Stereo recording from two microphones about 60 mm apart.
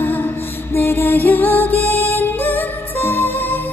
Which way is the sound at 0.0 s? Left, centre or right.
Left.